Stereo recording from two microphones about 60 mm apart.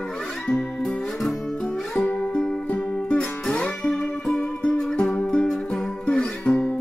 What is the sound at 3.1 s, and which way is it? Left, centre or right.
Music, centre.